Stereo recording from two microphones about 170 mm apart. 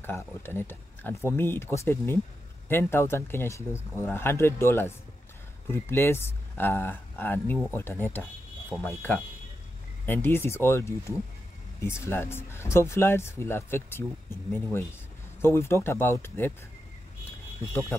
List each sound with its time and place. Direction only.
0.0 s speech: 15° left (ahead or behind)